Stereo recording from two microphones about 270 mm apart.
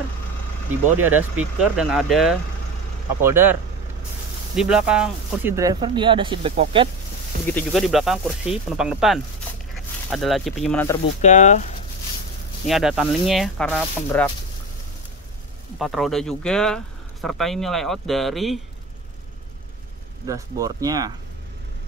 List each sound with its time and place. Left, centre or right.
1.0 s speech: centre
4.6 s speech: centre; by 6.9 s right
7.4 s speech: centre
11.1 s speech: left
12.6 s speech: centre
15.8 s speech: centre
20.2 s speech: centre